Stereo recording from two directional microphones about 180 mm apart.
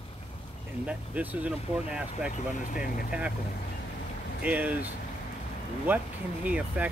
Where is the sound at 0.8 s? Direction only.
10° right (ahead or behind).